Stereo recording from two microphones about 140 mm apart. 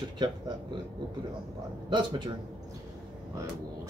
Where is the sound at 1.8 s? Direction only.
35° right (ahead or behind).